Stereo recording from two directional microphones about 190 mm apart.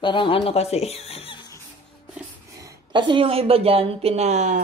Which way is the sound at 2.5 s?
20° right (ahead or behind).